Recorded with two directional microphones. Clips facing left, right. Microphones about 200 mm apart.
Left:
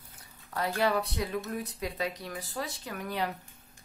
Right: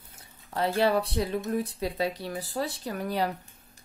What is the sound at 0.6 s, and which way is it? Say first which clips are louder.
Speech: right 4 dB; 30° right (ahead or behind).